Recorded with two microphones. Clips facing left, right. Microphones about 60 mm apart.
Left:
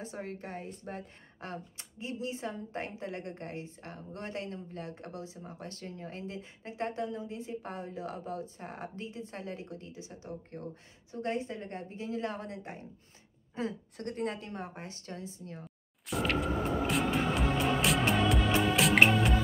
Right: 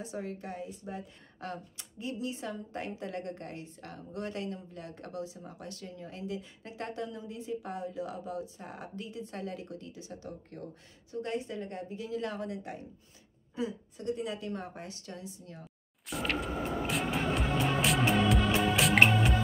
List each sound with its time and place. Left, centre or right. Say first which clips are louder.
0.0 s a woman's voice: right 2 dB; left
1.4 s a woman's voice: right 1 dB; left
13.9 s speech: right 2 dB; left
14.4 s a woman's voice: right 2 dB; left
16.1 s music: left 3 dB; centre